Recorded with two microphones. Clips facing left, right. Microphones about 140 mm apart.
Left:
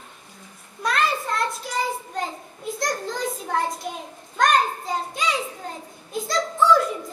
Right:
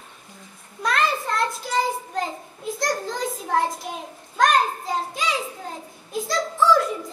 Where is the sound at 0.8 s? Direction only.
Centre (ahead or behind).